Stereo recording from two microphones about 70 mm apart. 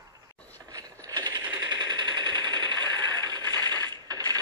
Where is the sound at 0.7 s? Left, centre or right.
Right.